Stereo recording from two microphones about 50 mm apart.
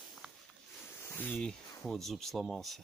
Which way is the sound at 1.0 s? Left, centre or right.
Left.